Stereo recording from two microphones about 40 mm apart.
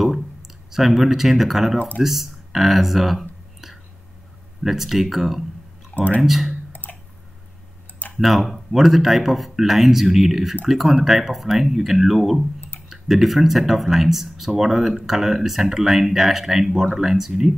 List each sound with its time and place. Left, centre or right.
0.0 s speech: centre
6.7 s a sound: left
8.2 s speech: centre